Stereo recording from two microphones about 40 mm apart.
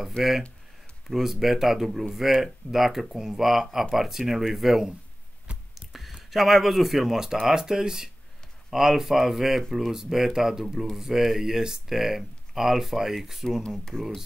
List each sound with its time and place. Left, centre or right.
0.2 s speech: left
1.0 s speech: centre
5.8 s a sound: centre
6.1 s speech: centre